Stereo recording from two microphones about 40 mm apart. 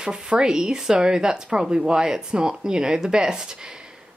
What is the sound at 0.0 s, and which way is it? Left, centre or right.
A woman's voice, right.